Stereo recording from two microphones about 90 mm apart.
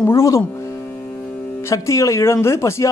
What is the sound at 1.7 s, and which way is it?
A man's voice, 35° left (ahead or behind).